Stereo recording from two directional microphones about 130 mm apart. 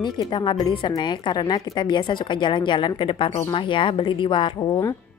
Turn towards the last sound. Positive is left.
turn(degrees=40)  # may be behind; listen again after turning